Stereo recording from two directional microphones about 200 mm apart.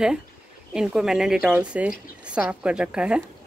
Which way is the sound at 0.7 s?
5° right (ahead or behind).